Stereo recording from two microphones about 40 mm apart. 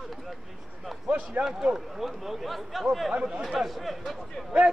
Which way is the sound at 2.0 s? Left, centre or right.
Centre.